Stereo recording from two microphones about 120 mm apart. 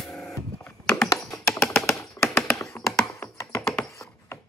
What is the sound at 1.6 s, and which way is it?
Tap, 5° left (ahead or behind).